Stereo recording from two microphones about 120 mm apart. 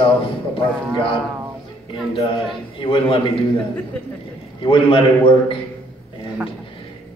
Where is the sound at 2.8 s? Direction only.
50° left (ahead or behind).